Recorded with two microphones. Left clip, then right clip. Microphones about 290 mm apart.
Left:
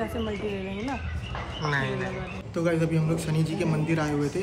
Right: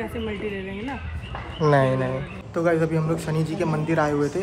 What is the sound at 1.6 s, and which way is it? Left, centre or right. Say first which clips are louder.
Speech: right 9 dB; centre.